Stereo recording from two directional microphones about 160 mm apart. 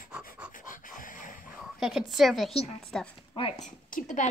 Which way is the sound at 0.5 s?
55° left (ahead or behind).